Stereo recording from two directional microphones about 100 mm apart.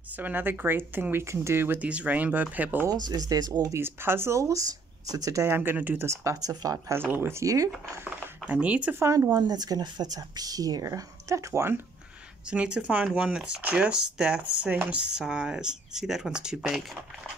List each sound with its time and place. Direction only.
0.1 s speech: 20° right (ahead or behind)
2.9 s speech: 40° right (ahead or behind)
3.7 s speech: 25° right (ahead or behind)
6.0 s speech: 30° right (ahead or behind)
7.1 s speech: 25° right (ahead or behind)
8.5 s speech: 15° right (ahead or behind)
9.0 s speech: 25° right (ahead or behind)
9.3 s speech: 40° right (ahead or behind); by 11.8 s 25° right (ahead or behind)
12.4 s speech: 10° right (ahead or behind)